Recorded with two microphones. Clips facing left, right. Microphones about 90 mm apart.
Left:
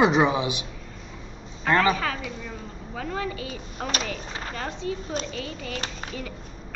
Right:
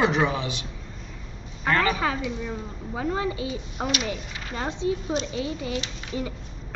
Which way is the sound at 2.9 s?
15° right (ahead or behind).